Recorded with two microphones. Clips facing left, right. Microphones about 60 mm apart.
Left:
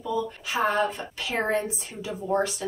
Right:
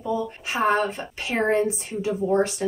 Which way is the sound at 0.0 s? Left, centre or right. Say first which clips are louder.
Right 2 dB; right.